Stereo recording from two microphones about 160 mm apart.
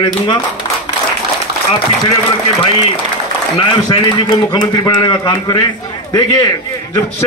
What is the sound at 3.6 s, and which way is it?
A man's voice, 30° left (ahead or behind).